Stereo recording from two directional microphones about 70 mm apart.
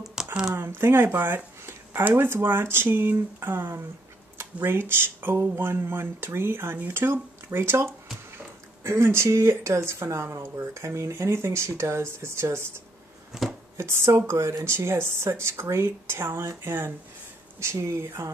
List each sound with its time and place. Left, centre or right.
0.0 s a sound: centre
0.6 s speech: right
13.3 s chopping: centre
13.7 s speech: right